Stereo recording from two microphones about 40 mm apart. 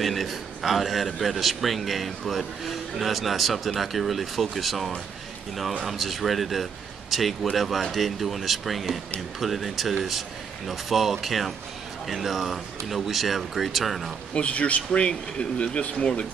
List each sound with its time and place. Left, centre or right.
0.0 s a man's voice: centre
14.3 s a man's voice: left